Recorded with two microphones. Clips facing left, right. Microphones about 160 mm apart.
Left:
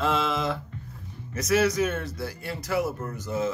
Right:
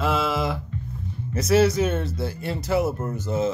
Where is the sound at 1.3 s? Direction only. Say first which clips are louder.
Right 4 dB; 30° right (ahead or behind).